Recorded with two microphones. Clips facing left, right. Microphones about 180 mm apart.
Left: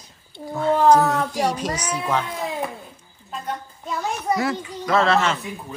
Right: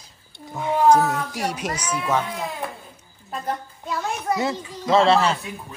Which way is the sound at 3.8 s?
Centre (ahead or behind).